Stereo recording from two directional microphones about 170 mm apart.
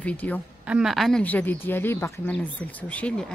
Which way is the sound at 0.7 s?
Centre (ahead or behind).